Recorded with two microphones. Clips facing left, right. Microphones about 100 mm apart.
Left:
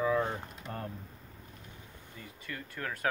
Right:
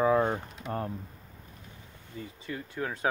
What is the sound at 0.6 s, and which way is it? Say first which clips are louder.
Speech: right 8 dB; centre (ahead or behind).